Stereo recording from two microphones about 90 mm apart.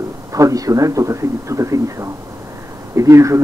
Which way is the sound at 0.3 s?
40° right (ahead or behind).